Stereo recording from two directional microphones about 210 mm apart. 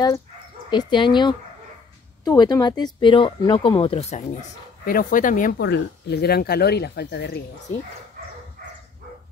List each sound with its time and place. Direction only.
0.7 s speech: 20° left (ahead or behind); by 5.6 s 40° left (ahead or behind)
5.6 s speech: 50° left (ahead or behind)